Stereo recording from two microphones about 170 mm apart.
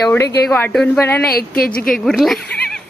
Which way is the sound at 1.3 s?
60° left (ahead or behind).